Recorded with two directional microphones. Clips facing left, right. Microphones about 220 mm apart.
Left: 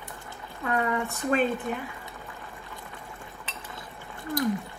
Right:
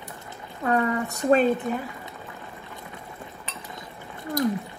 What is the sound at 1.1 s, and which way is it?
Speech, 40° right (ahead or behind).